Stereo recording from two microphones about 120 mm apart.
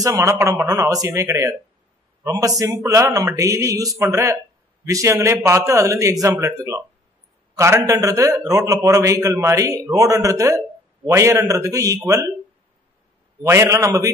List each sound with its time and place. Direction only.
0.0 s a man's voice: 25° right (ahead or behind)
13.4 s a man's voice: 25° right (ahead or behind)